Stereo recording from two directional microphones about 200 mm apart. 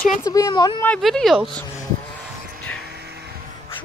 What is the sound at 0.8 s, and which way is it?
Speech, 5° left (ahead or behind).